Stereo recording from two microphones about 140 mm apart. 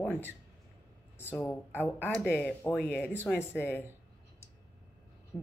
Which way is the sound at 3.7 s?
15° right (ahead or behind).